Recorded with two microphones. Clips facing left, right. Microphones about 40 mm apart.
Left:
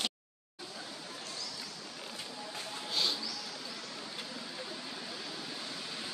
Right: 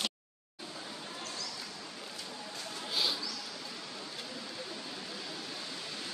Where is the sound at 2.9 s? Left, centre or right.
Centre.